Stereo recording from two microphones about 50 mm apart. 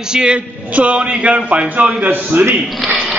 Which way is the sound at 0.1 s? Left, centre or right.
Centre.